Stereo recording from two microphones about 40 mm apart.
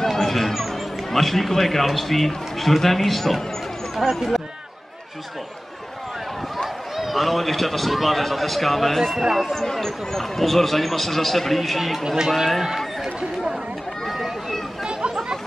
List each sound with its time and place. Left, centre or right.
0.0 s speech: centre
7.0 s speech: centre
9.2 s speech: centre
9.5 s speech: centre
12.6 s run: centre
14.0 s a sound: centre
14.9 s chatter: right